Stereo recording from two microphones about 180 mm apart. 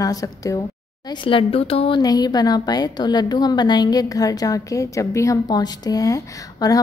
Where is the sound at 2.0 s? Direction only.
20° left (ahead or behind).